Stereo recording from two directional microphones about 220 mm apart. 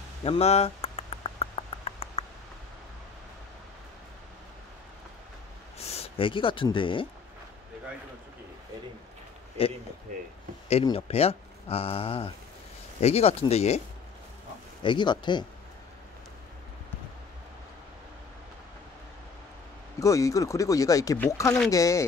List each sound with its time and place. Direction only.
0.2 s a sound: 25° left (ahead or behind)
5.8 s speech: 30° left (ahead or behind)
9.6 s speech: 25° left (ahead or behind)
10.1 s speech: 35° right (ahead or behind)
10.7 s speech: 25° left (ahead or behind)
14.8 s speech: 20° left (ahead or behind)
20.0 s speech: 15° left (ahead or behind)